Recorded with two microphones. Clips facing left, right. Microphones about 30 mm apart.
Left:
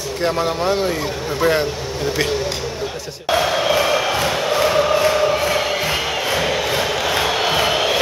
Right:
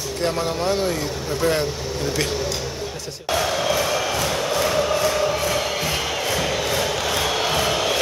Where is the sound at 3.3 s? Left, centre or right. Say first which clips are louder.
Left 4 dB; left.